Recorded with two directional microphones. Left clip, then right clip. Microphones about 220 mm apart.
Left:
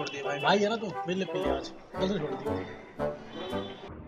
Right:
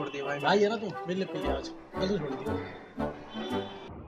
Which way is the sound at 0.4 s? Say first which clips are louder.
Even; 10° left (ahead or behind).